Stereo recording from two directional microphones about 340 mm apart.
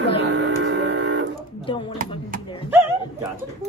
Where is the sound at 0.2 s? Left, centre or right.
Right.